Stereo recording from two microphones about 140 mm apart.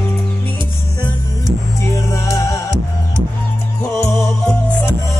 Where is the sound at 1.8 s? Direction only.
20° left (ahead or behind).